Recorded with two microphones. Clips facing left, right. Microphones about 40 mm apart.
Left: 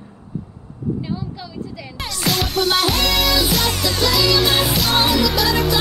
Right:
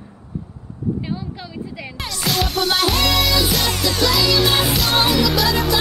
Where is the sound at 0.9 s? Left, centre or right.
Centre.